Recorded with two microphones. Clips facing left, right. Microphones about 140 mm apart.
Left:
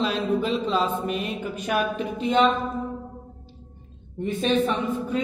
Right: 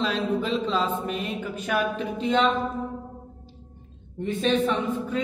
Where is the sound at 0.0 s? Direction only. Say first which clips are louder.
Left 2 dB; 10° left (ahead or behind).